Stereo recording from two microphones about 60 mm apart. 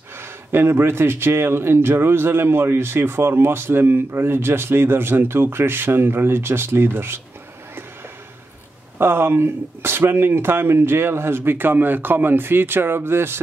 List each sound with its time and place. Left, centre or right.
0.2 s a man's voice: right
8.9 s a man's voice: right